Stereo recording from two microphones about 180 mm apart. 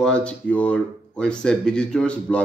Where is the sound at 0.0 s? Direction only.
5° left (ahead or behind).